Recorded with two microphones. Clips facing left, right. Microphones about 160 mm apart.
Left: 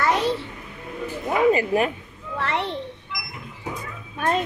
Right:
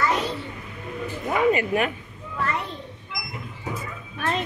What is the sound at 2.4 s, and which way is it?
Speech, 75° left (ahead or behind).